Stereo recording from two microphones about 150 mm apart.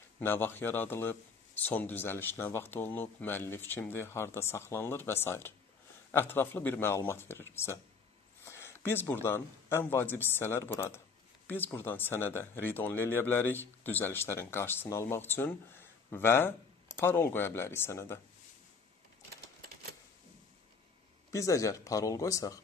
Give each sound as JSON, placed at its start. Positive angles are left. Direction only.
{"t": 0.2, "sound": "a man's voice", "side_deg": 15}
{"t": 21.3, "sound": "speech", "side_deg": 20}